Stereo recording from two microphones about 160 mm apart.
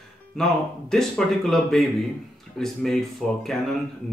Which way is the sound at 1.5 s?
Centre (ahead or behind).